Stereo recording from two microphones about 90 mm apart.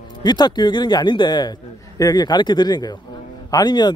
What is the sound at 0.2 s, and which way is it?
A man's voice, 55° left (ahead or behind).